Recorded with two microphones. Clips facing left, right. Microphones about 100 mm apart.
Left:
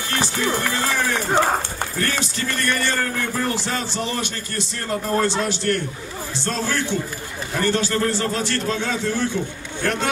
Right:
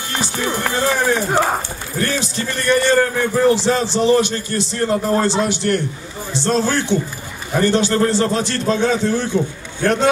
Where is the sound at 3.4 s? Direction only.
25° right (ahead or behind).